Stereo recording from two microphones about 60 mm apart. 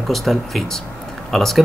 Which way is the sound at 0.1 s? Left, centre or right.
Centre.